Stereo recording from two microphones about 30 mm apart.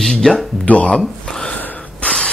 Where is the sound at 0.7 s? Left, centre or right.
Left.